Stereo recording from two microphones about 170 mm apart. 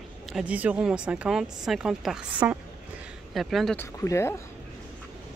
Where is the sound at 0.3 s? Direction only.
5° right (ahead or behind).